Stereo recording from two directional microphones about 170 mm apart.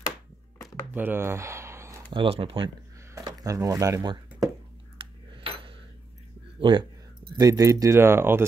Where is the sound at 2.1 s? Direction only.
35° right (ahead or behind).